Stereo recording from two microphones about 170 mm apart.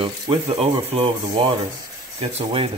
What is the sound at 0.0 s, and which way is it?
Speech, 30° right (ahead or behind).